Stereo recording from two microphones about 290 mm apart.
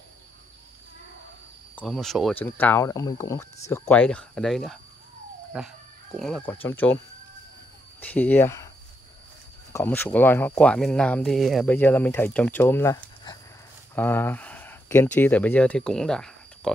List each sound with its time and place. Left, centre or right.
1.8 s speech: centre
8.0 s speech: centre
9.7 s speech: centre